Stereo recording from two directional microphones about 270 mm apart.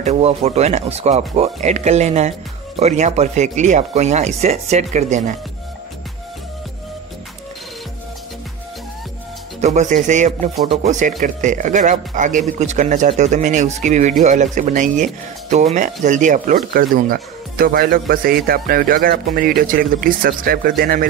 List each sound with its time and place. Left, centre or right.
0.0 s speech: right
9.6 s speech: right